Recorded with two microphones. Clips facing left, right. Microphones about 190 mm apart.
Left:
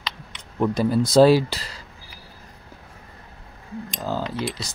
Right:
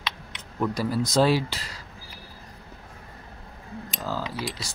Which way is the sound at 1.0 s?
35° left (ahead or behind).